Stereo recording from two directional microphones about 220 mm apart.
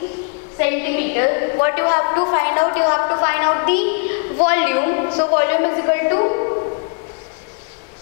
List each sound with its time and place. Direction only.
0.6 s a woman's voice: 15° left (ahead or behind)